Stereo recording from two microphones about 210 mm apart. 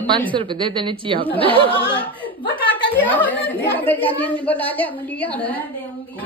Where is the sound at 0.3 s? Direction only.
25° right (ahead or behind).